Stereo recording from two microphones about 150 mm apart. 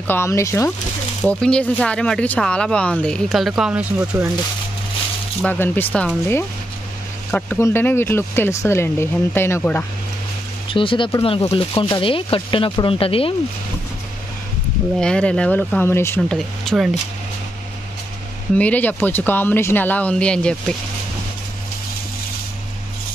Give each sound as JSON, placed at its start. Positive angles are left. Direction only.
{"t": 0.0, "sound": "speech", "side_deg": 15}
{"t": 1.2, "sound": "speech", "side_deg": 5}
{"t": 5.4, "sound": "speech", "side_deg": 10}
{"t": 10.7, "sound": "speech", "side_deg": 35}
{"t": 15.0, "sound": "speech", "side_deg": 5}
{"t": 16.2, "sound": "speech", "side_deg": 5}
{"t": 18.6, "sound": "speech", "side_deg": 10}